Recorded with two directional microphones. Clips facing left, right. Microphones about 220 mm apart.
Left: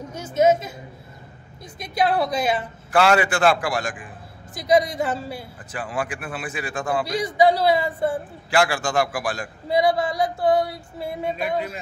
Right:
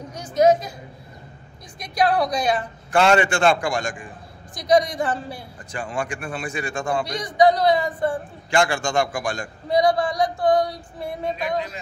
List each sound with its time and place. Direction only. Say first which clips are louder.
0.3 s a man's voice: right 1 dB; 5° left (ahead or behind)
2.0 s a man's voice: right 1 dB; 25° left (ahead or behind)
2.9 s a man's voice: right 1 dB; 5° left (ahead or behind)
4.8 s a man's voice: even; 25° left (ahead or behind)
5.7 s a man's voice: even; 5° left (ahead or behind)
7.2 s a man's voice: right 1 dB; 25° left (ahead or behind)
8.5 s a man's voice: even; 5° left (ahead or behind)